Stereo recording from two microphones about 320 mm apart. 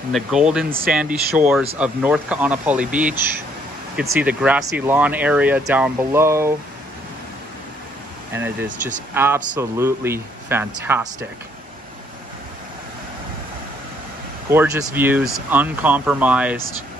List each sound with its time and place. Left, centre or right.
0.1 s speech: centre
0.7 s speech: right
0.9 s speech: centre
4.2 s speech: centre
8.6 s speech: right
9.1 s speech: centre
14.5 s speech: centre